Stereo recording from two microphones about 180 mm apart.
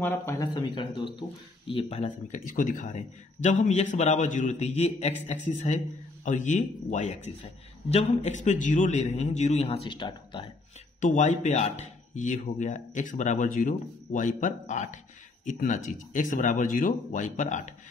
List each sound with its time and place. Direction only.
0.0 s a man's voice: 10° left (ahead or behind); by 5.1 s 35° left (ahead or behind)
6.2 s a man's voice: 45° left (ahead or behind); by 10.4 s 25° left (ahead or behind)
11.0 s speech: 45° left (ahead or behind)